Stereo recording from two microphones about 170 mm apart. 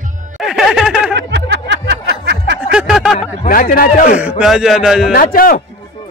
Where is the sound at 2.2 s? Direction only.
90° right.